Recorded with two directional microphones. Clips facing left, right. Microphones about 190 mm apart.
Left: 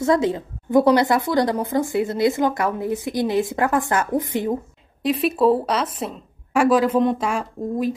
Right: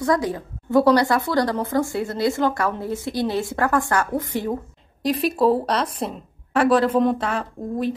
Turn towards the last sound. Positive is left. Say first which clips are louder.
# left 2 dB
turn(degrees=10)  # may be behind; listen again after turning